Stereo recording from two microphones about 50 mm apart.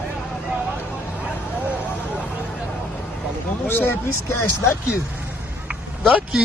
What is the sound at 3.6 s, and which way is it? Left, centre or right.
Speech, left.